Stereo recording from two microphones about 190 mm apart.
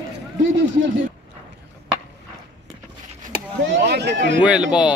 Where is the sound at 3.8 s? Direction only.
60° right (ahead or behind).